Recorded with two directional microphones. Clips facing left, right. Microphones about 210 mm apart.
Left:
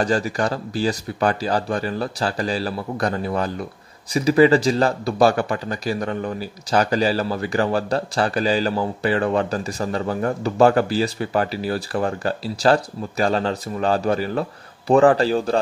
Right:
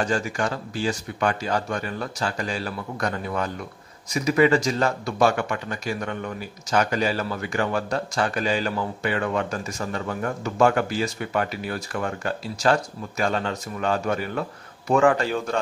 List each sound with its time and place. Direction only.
0.0 s speech: 35° left (ahead or behind)